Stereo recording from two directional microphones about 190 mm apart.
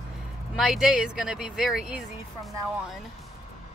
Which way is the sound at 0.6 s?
Centre (ahead or behind).